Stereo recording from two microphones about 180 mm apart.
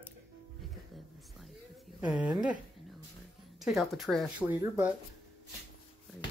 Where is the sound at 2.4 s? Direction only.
5° right (ahead or behind).